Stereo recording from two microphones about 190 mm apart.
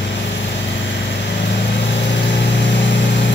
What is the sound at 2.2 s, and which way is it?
Vehicle, 70° left (ahead or behind).